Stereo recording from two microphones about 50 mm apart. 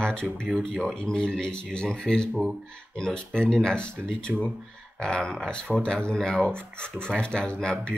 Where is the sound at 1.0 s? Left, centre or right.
Centre.